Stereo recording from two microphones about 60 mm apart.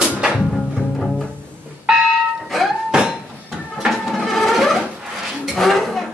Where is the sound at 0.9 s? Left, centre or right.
Centre.